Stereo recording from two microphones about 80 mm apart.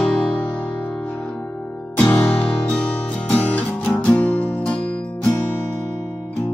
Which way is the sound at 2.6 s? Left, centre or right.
Centre.